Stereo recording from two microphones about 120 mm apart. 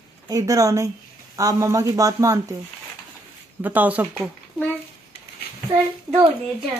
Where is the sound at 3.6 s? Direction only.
15° right (ahead or behind).